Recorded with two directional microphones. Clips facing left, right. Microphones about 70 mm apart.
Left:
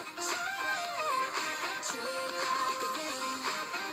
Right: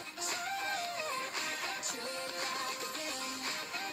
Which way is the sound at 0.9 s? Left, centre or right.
Left.